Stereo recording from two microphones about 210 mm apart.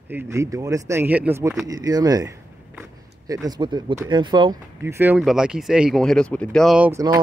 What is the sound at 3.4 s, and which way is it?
Speech, 20° right (ahead or behind).